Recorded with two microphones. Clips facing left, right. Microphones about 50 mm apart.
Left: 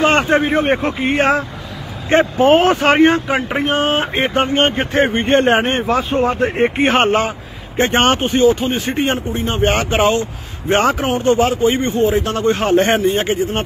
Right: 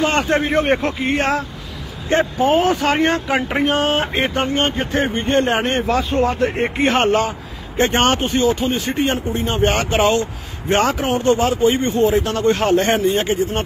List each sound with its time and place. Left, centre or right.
0.0 s speech: left
0.3 s speech: centre
1.1 s speech: left
2.4 s speech: left
3.0 s speech: centre
3.3 s speech: centre
4.4 s speech: left
5.6 s speech: left
5.9 s speech: left
6.6 s speech: left
7.7 s speech: centre
12.7 s speech: left